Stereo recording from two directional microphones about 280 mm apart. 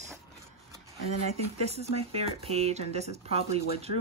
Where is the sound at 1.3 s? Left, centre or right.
Right.